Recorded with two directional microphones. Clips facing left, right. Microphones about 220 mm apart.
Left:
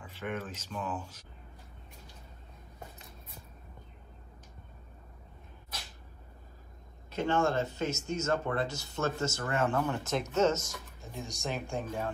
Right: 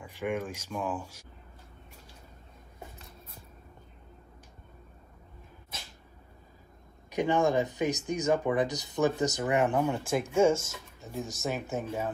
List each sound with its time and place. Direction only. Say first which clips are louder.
0.0 s speech: right 5 dB; 15° right (ahead or behind)
7.1 s speech: right 3 dB; 15° right (ahead or behind)